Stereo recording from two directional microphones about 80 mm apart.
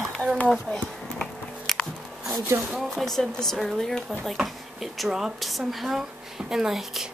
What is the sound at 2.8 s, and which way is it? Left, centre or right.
Speech, centre.